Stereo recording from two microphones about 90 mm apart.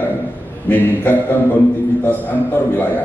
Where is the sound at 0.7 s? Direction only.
20° left (ahead or behind).